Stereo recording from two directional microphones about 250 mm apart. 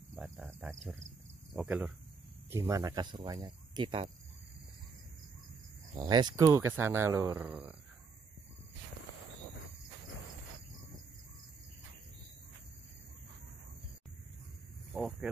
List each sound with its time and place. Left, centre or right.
0.1 s cricket: centre
1.5 s speech: centre
5.9 s speech: centre
14.9 s speech: centre